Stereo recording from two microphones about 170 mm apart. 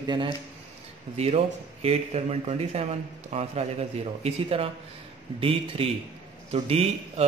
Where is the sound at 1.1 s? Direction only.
35° right (ahead or behind).